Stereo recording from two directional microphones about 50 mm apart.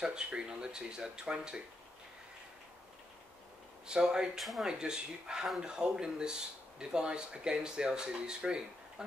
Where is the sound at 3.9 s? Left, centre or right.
Centre.